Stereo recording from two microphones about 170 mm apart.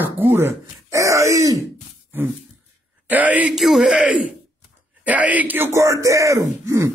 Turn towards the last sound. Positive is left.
turn(degrees=-15)  # may be behind; listen again after turning